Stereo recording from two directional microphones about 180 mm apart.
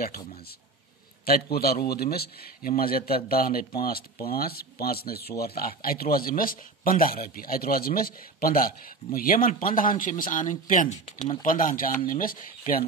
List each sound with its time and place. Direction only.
1.2 s speech: 55° left (ahead or behind)